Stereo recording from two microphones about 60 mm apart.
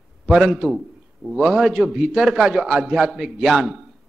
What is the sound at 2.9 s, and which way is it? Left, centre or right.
Speech, centre.